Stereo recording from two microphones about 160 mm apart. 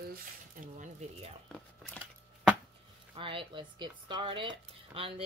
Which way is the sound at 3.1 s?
30° right (ahead or behind).